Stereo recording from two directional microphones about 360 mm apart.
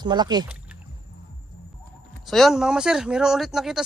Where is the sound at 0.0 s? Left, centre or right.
Centre.